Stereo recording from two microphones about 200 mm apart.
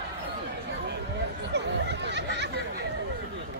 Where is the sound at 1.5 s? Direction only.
60° right (ahead or behind).